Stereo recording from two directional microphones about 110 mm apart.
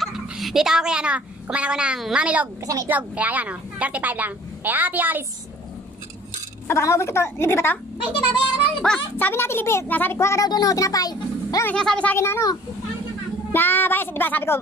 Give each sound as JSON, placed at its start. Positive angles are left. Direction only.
{"t": 0.0, "sound": "a woman's voice", "side_deg": 0}
{"t": 2.6, "sound": "a woman's voice", "side_deg": -30}
{"t": 2.9, "sound": "a woman's voice", "side_deg": -15}
{"t": 6.7, "sound": "a child's voice", "side_deg": 25}
{"t": 8.8, "sound": "speech", "side_deg": 5}
{"t": 9.2, "sound": "a child's voice", "side_deg": 20}
{"t": 11.6, "sound": "speech", "side_deg": 10}
{"t": 12.2, "sound": "a child's voice", "side_deg": 25}